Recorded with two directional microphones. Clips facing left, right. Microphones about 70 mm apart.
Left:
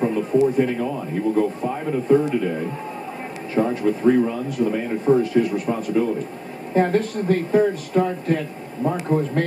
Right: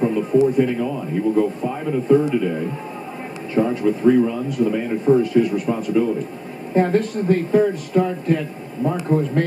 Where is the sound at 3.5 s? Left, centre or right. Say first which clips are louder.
Right 2 dB; centre.